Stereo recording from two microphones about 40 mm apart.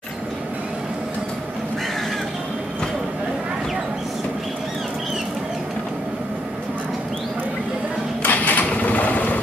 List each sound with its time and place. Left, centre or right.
8.2 s printer: left